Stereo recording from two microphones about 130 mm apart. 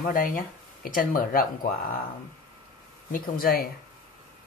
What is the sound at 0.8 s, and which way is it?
Speech, 90° left.